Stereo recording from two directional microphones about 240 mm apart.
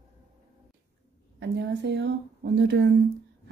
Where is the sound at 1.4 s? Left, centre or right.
Right.